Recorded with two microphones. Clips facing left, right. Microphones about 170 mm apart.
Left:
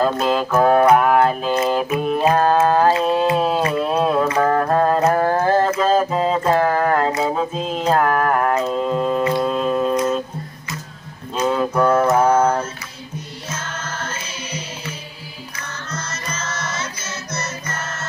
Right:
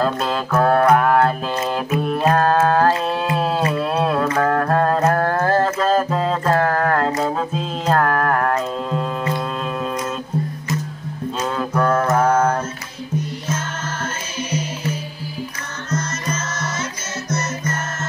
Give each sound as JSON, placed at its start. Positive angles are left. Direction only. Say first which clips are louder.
{"t": 0.0, "sound": "music", "louder": "left 3 dB", "side_deg": 5}
{"t": 1.5, "sound": "mantra", "louder": "left 3 dB", "side_deg": 5}
{"t": 3.3, "sound": "a sound", "louder": "left 1 dB", "side_deg": 5}
{"t": 4.3, "sound": "music", "louder": "left 1 dB", "side_deg": 5}
{"t": 5.5, "sound": "mantra", "louder": "even", "side_deg": 0}
{"t": 11.3, "sound": "mantra", "louder": "left 4 dB", "side_deg": 10}
{"t": 15.9, "sound": "music", "louder": "right 7 dB", "side_deg": -45}